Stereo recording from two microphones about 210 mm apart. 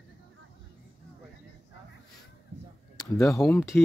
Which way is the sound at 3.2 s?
15° left (ahead or behind).